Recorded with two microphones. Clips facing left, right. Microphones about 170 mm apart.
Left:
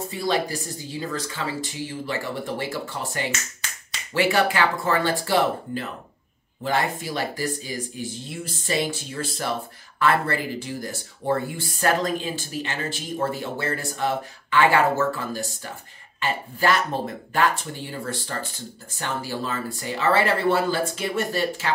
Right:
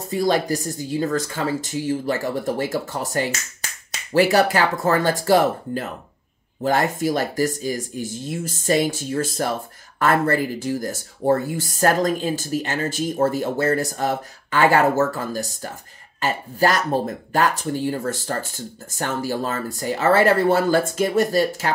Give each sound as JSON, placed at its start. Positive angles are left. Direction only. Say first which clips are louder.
{"t": 0.1, "sound": "speech", "louder": "right 6 dB", "side_deg": -45}